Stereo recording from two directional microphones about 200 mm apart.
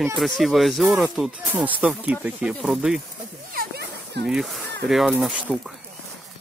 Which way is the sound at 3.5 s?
50° right (ahead or behind).